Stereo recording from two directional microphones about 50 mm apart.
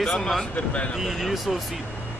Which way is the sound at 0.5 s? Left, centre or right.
Left.